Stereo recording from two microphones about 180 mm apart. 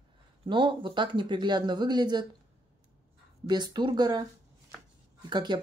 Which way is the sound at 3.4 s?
25° right (ahead or behind).